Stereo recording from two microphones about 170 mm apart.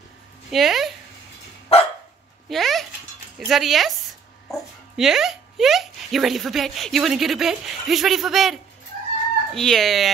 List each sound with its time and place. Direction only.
0.5 s speech: centre (ahead or behind)
1.7 s dog: 35° left (ahead or behind)
2.5 s a sound: centre (ahead or behind)
3.3 s speech: centre (ahead or behind)